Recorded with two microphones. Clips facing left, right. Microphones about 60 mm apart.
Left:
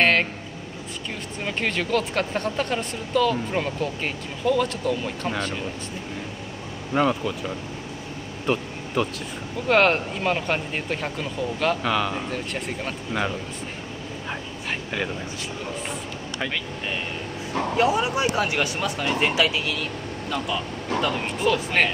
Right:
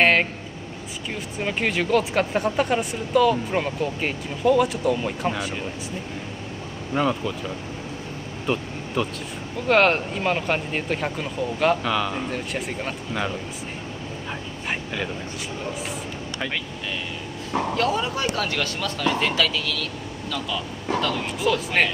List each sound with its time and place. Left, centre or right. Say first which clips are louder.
0.0 s a sound: right 1 dB; centre
1.4 s speech: right 2 dB; centre
6.9 s speech: left 1 dB; centre
8.5 s a sound: left 1 dB; centre
9.7 s speech: right 1 dB; centre
13.1 s speech: left 2 dB; centre
17.7 s speech: left 5 dB; centre
21.4 s speech: even; centre